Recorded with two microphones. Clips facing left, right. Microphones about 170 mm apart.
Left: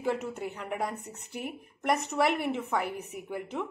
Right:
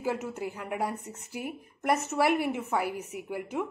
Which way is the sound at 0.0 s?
5° right (ahead or behind).